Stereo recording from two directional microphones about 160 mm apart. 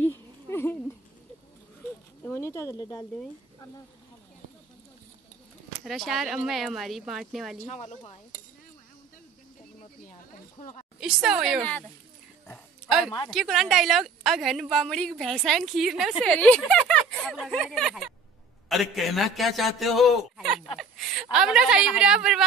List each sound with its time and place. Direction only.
0.0 s a sound: 15° left (ahead or behind)
2.2 s speech: 15° left (ahead or behind)
5.9 s a woman's voice: centre (ahead or behind)
7.6 s speech: 45° left (ahead or behind)
10.6 s a woman's voice: 50° left (ahead or behind)
11.0 s a woman's voice: 5° right (ahead or behind)
12.8 s a sound: centre (ahead or behind)
13.3 s a woman's voice: centre (ahead or behind)